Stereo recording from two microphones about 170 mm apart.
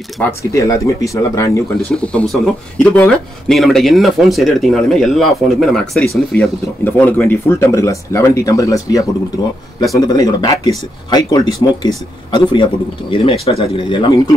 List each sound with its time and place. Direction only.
0.2 s speech: 15° left (ahead or behind)
2.0 s speech: 5° left (ahead or behind); by 13.9 s 35° left (ahead or behind)